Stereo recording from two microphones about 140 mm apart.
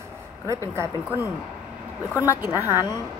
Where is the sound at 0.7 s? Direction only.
15° right (ahead or behind).